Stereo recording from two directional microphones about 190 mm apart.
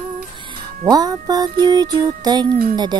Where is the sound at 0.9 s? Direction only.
20° right (ahead or behind).